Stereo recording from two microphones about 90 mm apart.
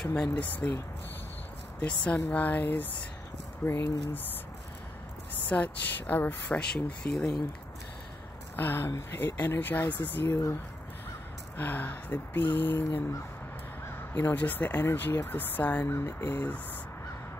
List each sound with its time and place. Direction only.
0.0 s speech: 10° left (ahead or behind)
1.8 s speech: 15° left (ahead or behind)
5.5 s speech: 20° left (ahead or behind)
8.5 s speech: 25° left (ahead or behind)
11.5 s speech: 20° left (ahead or behind)
14.1 s speech: 20° left (ahead or behind)
15.9 s speech: 30° left (ahead or behind)